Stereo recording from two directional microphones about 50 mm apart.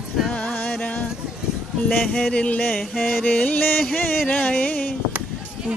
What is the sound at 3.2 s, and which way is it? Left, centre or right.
Music, left.